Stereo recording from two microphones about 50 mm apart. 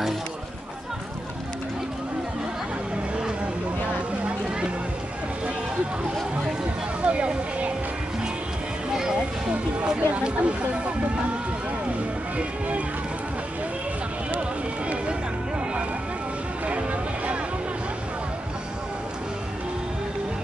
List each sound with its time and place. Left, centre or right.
7.1 s speech: right
8.9 s music: centre
9.9 s speech: right
12.4 s speech: right